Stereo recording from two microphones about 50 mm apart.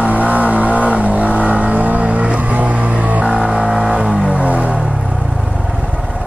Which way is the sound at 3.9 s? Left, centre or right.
Right.